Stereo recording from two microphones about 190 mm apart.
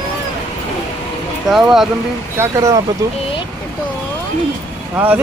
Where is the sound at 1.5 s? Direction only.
Centre (ahead or behind).